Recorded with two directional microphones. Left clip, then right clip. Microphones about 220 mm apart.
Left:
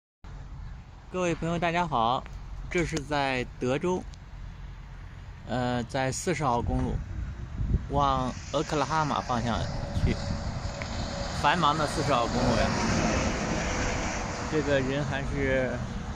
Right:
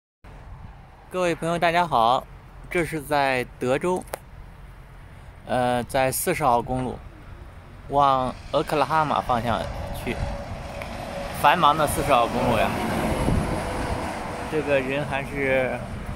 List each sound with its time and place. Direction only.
1.1 s speech: 5° right (ahead or behind)
5.5 s speech: 5° right (ahead or behind)
9.7 s a sound: 15° left (ahead or behind)
10.1 s vehicle: 10° left (ahead or behind)
12.4 s speech: centre (ahead or behind)
12.7 s vehicle: 20° left (ahead or behind)
14.7 s speech: centre (ahead or behind)